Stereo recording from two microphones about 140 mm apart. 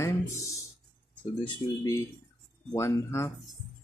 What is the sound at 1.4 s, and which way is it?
Speech, 35° left (ahead or behind).